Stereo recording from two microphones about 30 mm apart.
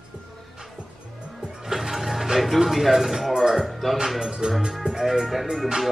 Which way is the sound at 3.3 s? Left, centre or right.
Centre.